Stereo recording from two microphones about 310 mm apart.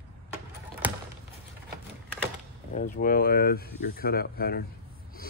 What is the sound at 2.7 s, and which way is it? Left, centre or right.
Speech, left.